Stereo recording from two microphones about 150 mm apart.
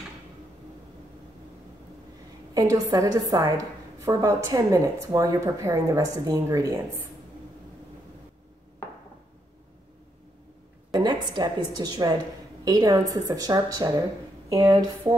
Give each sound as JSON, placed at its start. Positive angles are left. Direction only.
{"t": 2.5, "sound": "a woman's voice", "side_deg": -25}
{"t": 10.9, "sound": "a woman's voice", "side_deg": -30}